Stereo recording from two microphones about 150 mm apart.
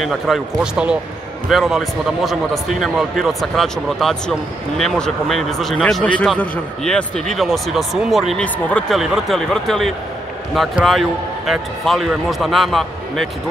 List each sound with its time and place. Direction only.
0.0 s a man's voice: 5° right (ahead or behind)